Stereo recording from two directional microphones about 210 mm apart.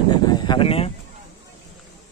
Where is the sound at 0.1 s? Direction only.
20° left (ahead or behind).